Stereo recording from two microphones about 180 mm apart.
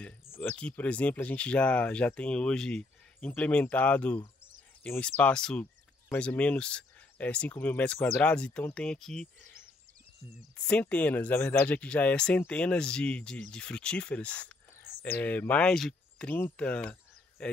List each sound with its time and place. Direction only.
0.4 s speech: 5° left (ahead or behind)
10.7 s speech: 10° left (ahead or behind)